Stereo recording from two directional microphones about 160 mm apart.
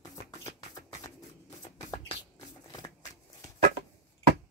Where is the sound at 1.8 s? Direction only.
20° left (ahead or behind).